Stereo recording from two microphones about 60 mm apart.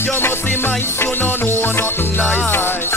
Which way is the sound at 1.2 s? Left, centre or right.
Left.